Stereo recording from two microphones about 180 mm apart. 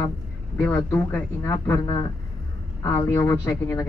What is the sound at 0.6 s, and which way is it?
Speech, 10° left (ahead or behind).